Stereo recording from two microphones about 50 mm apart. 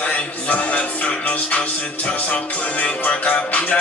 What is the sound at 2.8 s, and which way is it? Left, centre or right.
Speech, left.